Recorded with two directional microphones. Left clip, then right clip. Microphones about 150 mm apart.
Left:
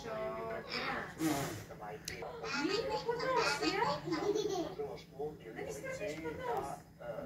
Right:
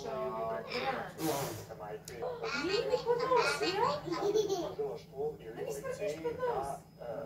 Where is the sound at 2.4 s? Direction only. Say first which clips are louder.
Right 2 dB; 35° left (ahead or behind).